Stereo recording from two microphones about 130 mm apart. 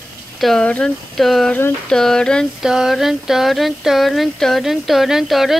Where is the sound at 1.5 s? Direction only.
15° left (ahead or behind).